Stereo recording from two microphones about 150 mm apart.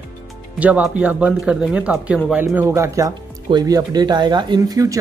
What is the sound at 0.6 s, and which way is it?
Speech, 10° right (ahead or behind).